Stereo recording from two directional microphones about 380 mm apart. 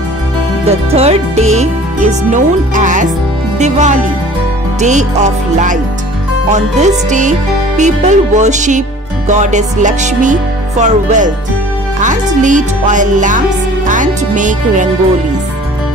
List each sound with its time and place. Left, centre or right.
0.7 s speech: centre
3.5 s music: centre
12.0 s speech: centre
13.8 s music: centre